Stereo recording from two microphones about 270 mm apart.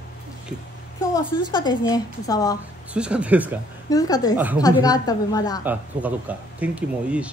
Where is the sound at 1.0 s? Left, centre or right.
Centre.